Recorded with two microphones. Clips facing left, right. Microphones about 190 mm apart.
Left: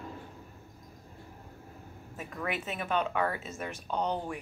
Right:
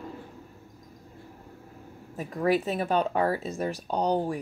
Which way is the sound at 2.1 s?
35° right (ahead or behind).